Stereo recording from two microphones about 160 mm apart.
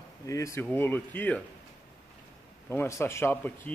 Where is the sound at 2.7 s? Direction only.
15° left (ahead or behind).